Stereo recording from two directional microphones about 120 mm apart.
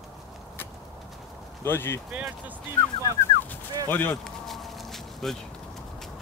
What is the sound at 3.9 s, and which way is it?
Speech, 15° left (ahead or behind).